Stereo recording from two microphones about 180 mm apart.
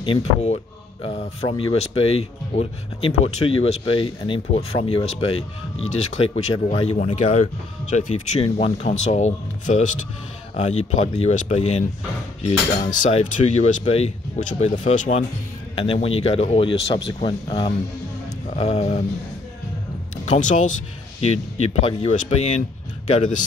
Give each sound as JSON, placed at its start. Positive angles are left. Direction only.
{"t": 0.0, "sound": "cutlery", "side_deg": 35}
{"t": 7.1, "sound": "speech", "side_deg": 40}
{"t": 7.9, "sound": "cutlery", "side_deg": 40}
{"t": 20.2, "sound": "speech", "side_deg": 45}
{"t": 21.2, "sound": "cutlery", "side_deg": 35}